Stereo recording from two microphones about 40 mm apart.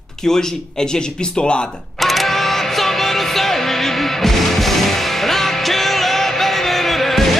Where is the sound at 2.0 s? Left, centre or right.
Centre.